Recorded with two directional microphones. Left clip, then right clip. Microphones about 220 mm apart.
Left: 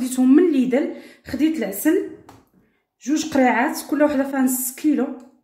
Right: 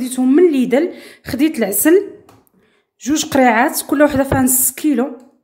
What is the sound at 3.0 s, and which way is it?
Speech, 40° right (ahead or behind).